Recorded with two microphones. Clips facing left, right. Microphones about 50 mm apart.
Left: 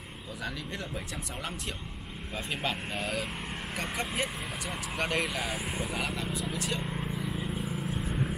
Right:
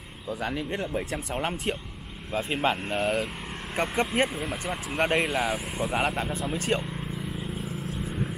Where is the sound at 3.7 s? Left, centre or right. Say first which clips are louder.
Right 8 dB; right.